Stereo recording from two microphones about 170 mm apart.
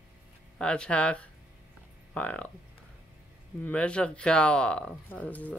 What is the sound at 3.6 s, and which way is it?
Speech, 5° left (ahead or behind).